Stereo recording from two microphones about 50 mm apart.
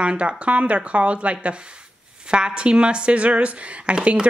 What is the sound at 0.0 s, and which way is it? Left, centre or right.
Speech, right.